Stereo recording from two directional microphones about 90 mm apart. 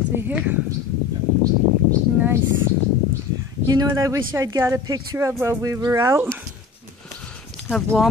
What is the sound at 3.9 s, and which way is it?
Speech, 40° right (ahead or behind).